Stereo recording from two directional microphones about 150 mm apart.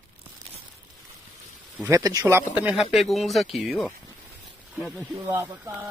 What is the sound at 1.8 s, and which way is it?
Speech, 20° right (ahead or behind).